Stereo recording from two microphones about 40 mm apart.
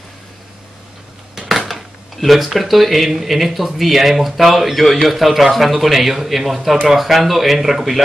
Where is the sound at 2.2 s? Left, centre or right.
Centre.